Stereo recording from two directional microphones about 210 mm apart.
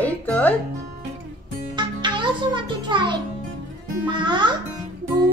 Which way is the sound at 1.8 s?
20° right (ahead or behind).